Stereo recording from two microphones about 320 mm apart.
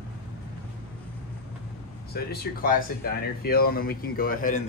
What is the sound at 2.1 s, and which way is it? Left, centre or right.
Speech, left.